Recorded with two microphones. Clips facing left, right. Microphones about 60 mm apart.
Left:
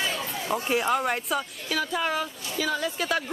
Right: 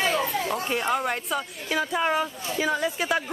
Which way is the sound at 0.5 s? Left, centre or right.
Centre.